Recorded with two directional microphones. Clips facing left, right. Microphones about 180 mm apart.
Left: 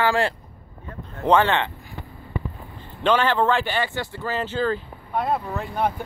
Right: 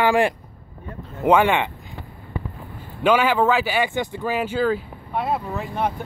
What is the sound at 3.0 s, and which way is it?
Speech, 10° right (ahead or behind).